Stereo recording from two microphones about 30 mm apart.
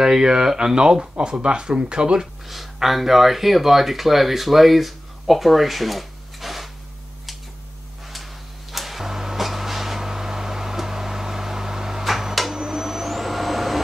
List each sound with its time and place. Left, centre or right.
0.0 s speech: right
2.4 s speech: centre
8.7 s a sound: centre
12.5 s vacuum cleaner: centre